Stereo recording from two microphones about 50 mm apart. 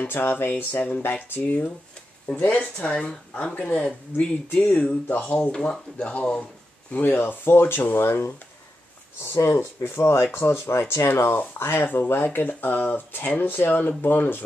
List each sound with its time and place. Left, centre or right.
0.1 s speech: left
2.4 s speech: left
5.5 s speech: centre
6.9 s speech: left
9.2 s speech: left
11.1 s speech: left